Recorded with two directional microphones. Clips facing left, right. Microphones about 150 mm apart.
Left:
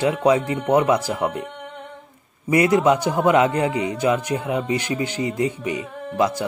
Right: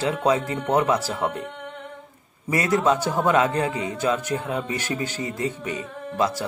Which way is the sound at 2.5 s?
15° left (ahead or behind).